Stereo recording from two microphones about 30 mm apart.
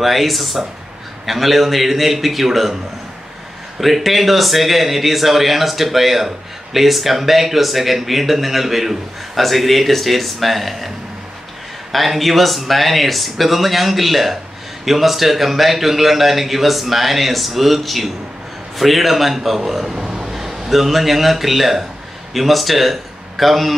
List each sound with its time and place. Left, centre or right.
0.0 s speech: centre
3.8 s speech: centre
11.9 s speech: centre
20.0 s vehicle: right
20.3 s a man's voice: centre